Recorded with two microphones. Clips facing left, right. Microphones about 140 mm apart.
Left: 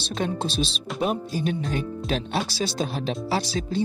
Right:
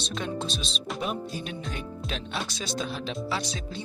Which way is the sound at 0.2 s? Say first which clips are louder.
Left 8 dB; 30° left (ahead or behind).